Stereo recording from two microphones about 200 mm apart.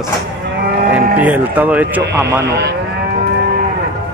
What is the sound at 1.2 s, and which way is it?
Speech, 10° right (ahead or behind).